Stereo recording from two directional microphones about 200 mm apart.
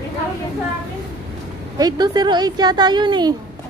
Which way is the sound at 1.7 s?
20° right (ahead or behind).